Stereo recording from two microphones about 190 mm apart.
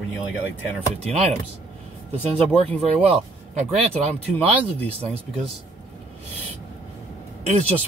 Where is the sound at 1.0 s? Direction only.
35° right (ahead or behind).